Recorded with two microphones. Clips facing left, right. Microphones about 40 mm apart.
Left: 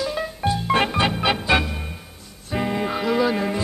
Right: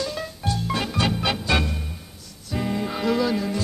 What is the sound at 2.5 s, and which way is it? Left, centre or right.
Music, left.